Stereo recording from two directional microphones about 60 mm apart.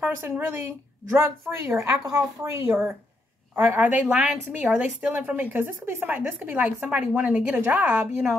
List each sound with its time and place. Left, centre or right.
0.0 s a woman's voice: right
3.5 s a woman's voice: right